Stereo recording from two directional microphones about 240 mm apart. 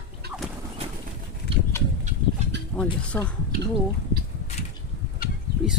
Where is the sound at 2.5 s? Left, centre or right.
Right.